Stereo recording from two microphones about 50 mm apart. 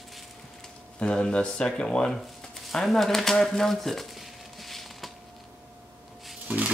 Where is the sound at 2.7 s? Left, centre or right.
Centre.